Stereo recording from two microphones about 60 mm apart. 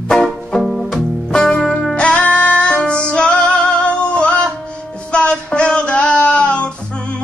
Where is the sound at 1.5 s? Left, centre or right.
Centre.